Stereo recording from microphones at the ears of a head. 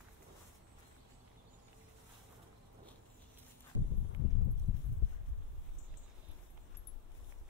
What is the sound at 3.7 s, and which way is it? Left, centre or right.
Horse, left.